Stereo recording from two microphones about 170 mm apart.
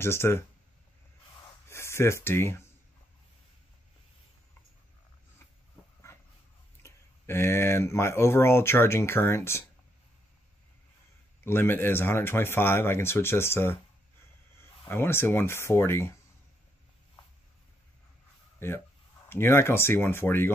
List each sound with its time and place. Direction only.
0.0 s speech: 15° left (ahead or behind)
1.7 s speech: 15° left (ahead or behind)
6.8 s speech: 15° left (ahead or behind)
11.4 s speech: 15° left (ahead or behind)
14.9 s speech: 15° left (ahead or behind)
18.6 s speech: 15° left (ahead or behind)